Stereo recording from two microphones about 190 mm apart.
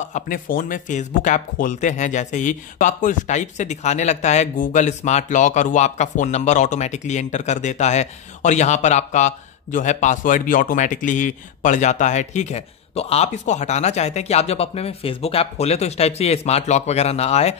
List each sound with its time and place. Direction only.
0.1 s speech: 45° left (ahead or behind)